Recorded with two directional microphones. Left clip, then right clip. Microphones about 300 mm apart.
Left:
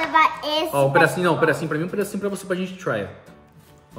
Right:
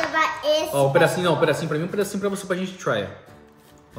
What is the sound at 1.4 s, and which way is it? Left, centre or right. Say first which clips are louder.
Speech: left 1 dB; centre.